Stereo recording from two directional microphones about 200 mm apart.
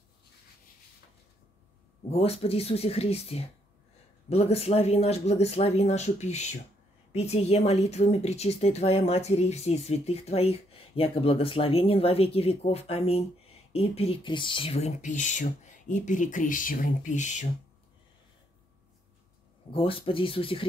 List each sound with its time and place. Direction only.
2.0 s speech: 30° left (ahead or behind)
19.7 s speech: 25° left (ahead or behind)